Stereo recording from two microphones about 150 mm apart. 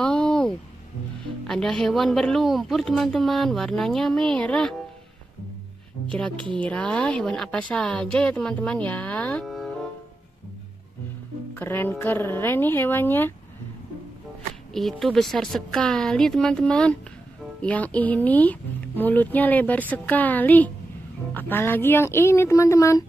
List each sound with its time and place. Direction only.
0.0 s a sound: 5° left (ahead or behind)
1.5 s speech: 5° left (ahead or behind)
6.3 s a woman's voice: 35° right (ahead or behind)
6.6 s a woman's voice: 10° left (ahead or behind)
11.5 s a woman's voice: 15° left (ahead or behind)
14.7 s a woman's voice: centre (ahead or behind); by 23.0 s 20° left (ahead or behind)